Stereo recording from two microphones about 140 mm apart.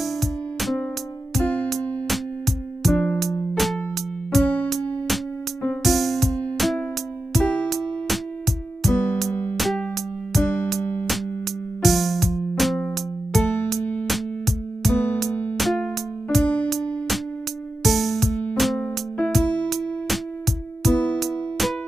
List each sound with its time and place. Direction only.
0.0 s music: centre (ahead or behind)
8.9 s music: 15° left (ahead or behind)
9.6 s music: centre (ahead or behind)
10.4 s music: 15° left (ahead or behind)
11.8 s music: centre (ahead or behind)